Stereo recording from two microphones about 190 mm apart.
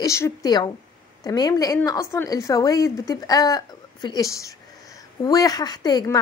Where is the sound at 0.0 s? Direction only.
15° left (ahead or behind).